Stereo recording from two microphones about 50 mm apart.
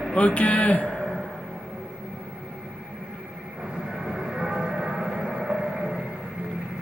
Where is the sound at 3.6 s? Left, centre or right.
Centre.